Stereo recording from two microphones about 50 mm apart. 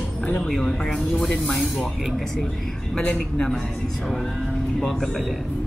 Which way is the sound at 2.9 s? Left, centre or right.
Centre.